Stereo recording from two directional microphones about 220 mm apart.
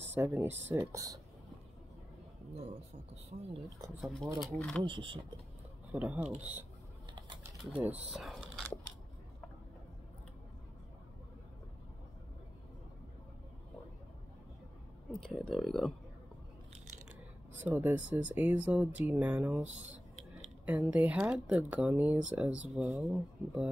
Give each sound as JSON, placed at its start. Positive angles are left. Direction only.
{"t": 0.0, "sound": "speech", "side_deg": -10}
{"t": 2.5, "sound": "speech", "side_deg": -30}
{"t": 4.0, "sound": "speech", "side_deg": 0}
{"t": 4.8, "sound": "speech", "side_deg": -20}
{"t": 5.9, "sound": "speech", "side_deg": -5}
{"t": 7.6, "sound": "speech", "side_deg": -5}
{"t": 15.2, "sound": "speech", "side_deg": 0}
{"t": 17.6, "sound": "speech", "side_deg": -10}